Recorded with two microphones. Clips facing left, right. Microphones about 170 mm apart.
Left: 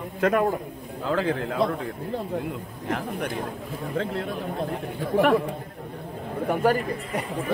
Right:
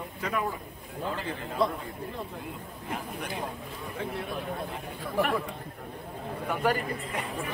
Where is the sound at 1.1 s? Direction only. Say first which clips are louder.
Left 14 dB; 90° left.